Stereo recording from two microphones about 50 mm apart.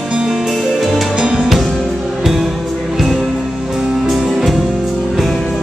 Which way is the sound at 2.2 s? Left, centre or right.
Centre.